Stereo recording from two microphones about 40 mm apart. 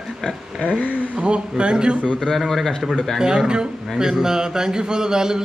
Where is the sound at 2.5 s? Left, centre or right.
Centre.